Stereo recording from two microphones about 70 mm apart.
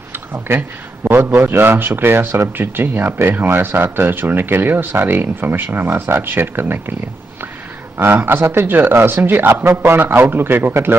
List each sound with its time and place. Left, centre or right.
0.1 s a man's voice: right
8.0 s a man's voice: right